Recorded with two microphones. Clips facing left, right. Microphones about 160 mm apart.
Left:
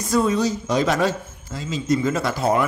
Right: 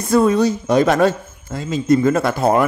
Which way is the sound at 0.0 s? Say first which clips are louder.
Right 5 dB; 55° right (ahead or behind).